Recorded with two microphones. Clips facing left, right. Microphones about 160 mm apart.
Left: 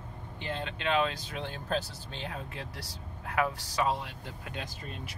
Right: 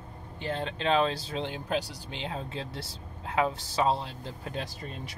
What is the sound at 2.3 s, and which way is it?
Speech, 25° right (ahead or behind).